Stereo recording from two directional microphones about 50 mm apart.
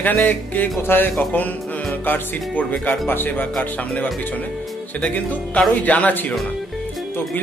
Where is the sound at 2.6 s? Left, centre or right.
Left.